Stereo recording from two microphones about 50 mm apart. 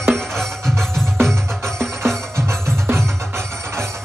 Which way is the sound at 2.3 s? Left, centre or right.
Right.